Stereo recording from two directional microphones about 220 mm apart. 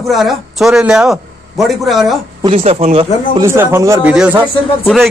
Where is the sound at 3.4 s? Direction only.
10° right (ahead or behind).